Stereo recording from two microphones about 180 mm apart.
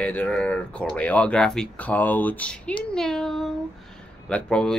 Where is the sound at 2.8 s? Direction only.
5° left (ahead or behind).